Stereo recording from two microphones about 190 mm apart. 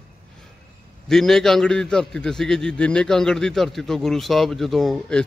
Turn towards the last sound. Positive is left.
turn(degrees=5)  # may be behind; listen again after turning